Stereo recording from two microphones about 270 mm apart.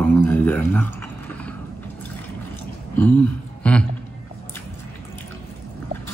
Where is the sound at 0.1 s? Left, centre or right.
Centre.